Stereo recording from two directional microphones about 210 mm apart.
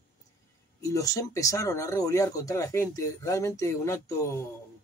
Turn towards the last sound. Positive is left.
turn(degrees=15)  # may be behind; listen again after turning